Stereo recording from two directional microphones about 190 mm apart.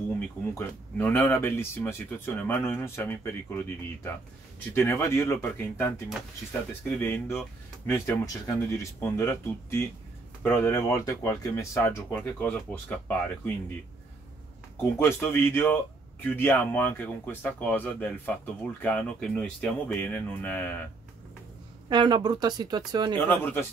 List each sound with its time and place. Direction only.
0.6 s a man's voice: 10° left (ahead or behind)
15.0 s a man's voice: 10° left (ahead or behind)
21.8 s speech: 25° right (ahead or behind)
23.2 s a man's voice: 10° left (ahead or behind)